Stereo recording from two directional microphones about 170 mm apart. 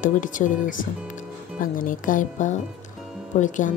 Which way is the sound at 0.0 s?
50° left (ahead or behind).